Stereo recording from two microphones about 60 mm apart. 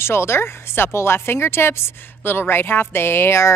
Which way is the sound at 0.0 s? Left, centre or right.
Left.